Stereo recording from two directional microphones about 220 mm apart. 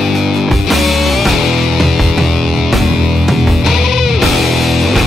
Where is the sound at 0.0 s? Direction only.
Centre (ahead or behind).